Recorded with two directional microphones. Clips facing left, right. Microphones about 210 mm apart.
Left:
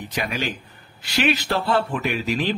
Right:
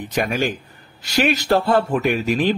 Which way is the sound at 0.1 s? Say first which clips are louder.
Right 6 dB; 50° right (ahead or behind).